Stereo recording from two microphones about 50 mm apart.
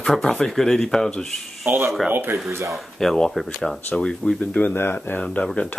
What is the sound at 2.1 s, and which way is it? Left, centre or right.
Speech, right.